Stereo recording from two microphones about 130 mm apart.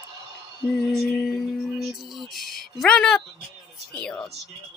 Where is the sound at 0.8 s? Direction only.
Centre (ahead or behind).